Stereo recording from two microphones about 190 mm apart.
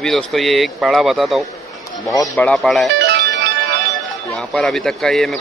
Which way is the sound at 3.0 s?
60° right (ahead or behind).